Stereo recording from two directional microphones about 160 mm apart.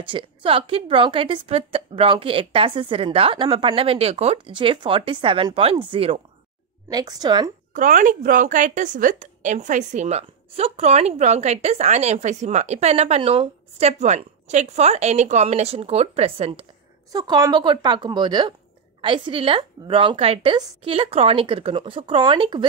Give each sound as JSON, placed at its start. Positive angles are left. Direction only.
{"t": 0.0, "sound": "a woman's voice", "side_deg": -35}
{"t": 7.7, "sound": "a woman's voice", "side_deg": -55}
{"t": 17.1, "sound": "a woman's voice", "side_deg": -25}